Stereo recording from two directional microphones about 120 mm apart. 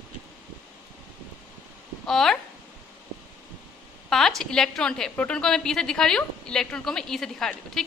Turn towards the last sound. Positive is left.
turn(degrees=5)  # may be behind; listen again after turning